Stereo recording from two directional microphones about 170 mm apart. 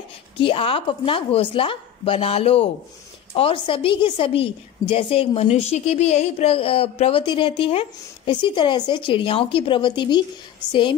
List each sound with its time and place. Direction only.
0.4 s a woman's voice: 30° left (ahead or behind)